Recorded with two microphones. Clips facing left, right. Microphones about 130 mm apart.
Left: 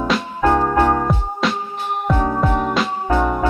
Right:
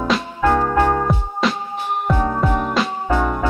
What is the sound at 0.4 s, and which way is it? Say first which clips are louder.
Music: left 1 dB; 15° left (ahead or behind).